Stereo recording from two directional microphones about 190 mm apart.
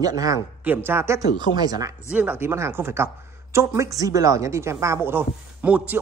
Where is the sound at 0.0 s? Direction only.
20° right (ahead or behind).